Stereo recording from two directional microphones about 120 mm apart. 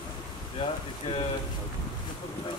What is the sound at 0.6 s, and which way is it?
Speech, 55° left (ahead or behind).